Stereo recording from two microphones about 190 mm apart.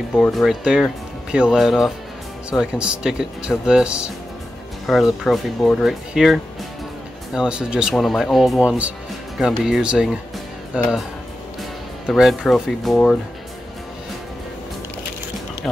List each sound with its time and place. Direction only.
0.1 s speech: centre (ahead or behind)
12.1 s speech: centre (ahead or behind)